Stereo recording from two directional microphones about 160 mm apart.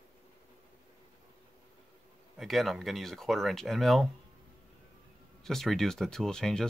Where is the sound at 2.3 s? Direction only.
Centre (ahead or behind).